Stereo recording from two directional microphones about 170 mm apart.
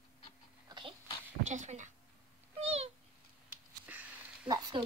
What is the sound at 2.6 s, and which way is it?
Babbling, 40° right (ahead or behind).